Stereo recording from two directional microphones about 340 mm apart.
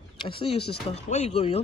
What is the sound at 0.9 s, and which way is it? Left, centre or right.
Speech, centre.